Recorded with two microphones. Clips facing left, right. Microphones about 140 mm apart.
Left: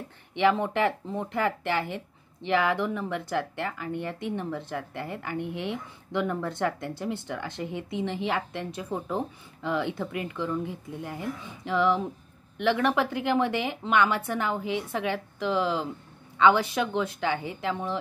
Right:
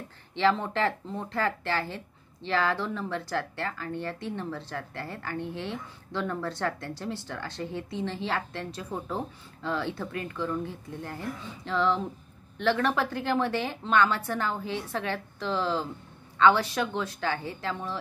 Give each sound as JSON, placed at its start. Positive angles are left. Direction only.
{"t": 0.3, "sound": "speech", "side_deg": 15}